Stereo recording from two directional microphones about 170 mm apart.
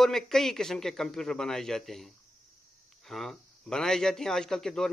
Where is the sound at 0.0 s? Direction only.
Centre (ahead or behind).